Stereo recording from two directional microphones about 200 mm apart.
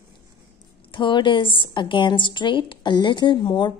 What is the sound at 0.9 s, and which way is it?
A woman's voice, 25° left (ahead or behind).